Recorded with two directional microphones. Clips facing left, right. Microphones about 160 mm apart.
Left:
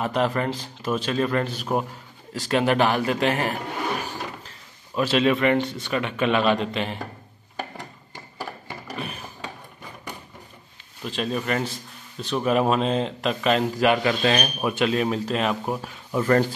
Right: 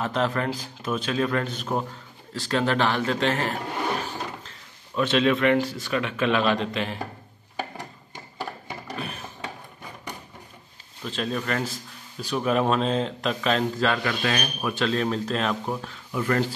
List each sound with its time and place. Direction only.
0.0 s a man's voice: 5° left (ahead or behind)
4.9 s a man's voice: 5° left (ahead or behind)
8.9 s a sound: centre (ahead or behind)
11.1 s a man's voice: 5° left (ahead or behind)
11.7 s a sound: 5° right (ahead or behind)
12.4 s a man's voice: 5° left (ahead or behind)
13.8 s speech: 25° left (ahead or behind)
16.1 s speech: 40° left (ahead or behind)